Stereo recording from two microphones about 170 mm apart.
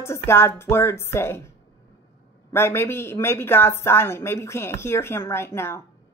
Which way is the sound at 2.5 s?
15° left (ahead or behind).